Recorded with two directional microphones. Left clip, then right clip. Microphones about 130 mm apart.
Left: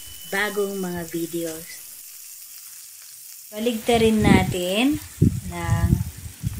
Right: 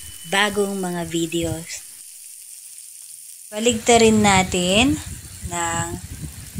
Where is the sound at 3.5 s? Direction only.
20° right (ahead or behind).